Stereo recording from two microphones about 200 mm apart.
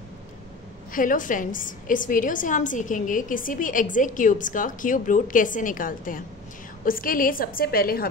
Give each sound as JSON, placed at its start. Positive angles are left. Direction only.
{"t": 0.9, "sound": "a woman's voice", "side_deg": 40}